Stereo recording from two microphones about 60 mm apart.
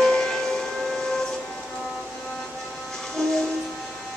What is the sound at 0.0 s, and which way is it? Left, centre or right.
Civil defense siren, centre.